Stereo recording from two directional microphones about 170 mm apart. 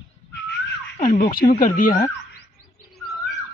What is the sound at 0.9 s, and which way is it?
Speech, 50° left (ahead or behind).